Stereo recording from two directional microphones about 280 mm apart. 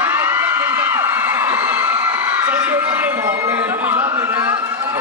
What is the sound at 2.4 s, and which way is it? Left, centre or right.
A man's voice, centre.